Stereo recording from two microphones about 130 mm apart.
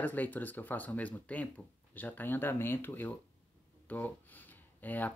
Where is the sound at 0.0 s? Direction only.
15° left (ahead or behind).